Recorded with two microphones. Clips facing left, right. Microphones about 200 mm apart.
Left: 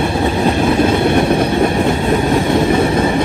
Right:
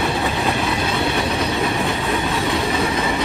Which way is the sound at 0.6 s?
50° left (ahead or behind).